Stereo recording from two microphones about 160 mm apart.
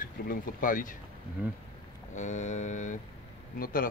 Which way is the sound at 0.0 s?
60° left (ahead or behind).